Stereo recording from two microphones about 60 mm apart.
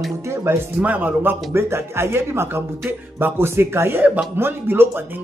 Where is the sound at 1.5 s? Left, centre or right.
Right.